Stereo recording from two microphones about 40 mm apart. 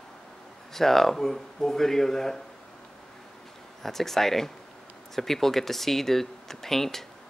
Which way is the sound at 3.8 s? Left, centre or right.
Centre.